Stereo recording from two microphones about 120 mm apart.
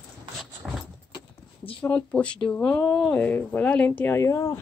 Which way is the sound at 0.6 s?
5° right (ahead or behind).